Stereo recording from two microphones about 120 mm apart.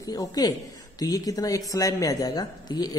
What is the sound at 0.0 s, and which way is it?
A woman's voice, 30° left (ahead or behind).